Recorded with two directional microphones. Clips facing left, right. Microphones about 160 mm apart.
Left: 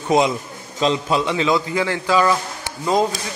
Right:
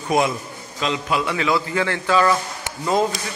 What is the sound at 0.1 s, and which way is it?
A man's voice, 25° left (ahead or behind).